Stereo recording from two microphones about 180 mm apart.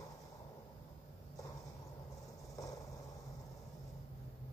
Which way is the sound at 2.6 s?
20° left (ahead or behind).